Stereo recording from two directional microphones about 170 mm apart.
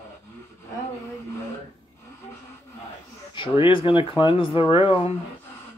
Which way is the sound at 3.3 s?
30° left (ahead or behind).